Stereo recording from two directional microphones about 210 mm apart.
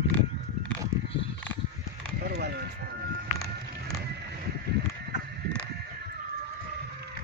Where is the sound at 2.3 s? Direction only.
50° right (ahead or behind).